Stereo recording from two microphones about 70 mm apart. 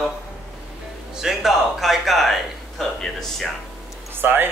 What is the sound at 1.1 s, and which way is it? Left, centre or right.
Speech, centre.